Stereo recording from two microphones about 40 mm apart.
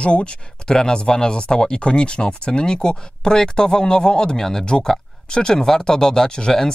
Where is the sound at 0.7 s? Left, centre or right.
Centre.